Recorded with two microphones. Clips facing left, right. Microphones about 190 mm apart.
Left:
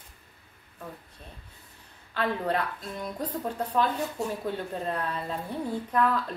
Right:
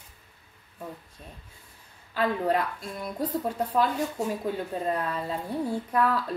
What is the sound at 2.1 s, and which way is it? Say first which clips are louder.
A woman's voice: right 3 dB; 10° right (ahead or behind).